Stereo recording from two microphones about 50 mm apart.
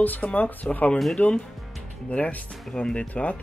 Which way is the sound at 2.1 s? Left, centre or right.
Left.